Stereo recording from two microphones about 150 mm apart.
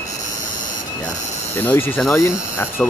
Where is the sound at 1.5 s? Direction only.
15° left (ahead or behind).